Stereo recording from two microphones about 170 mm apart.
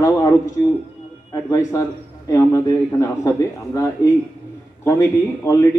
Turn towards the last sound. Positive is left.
turn(degrees=15)  # may be behind; listen again after turning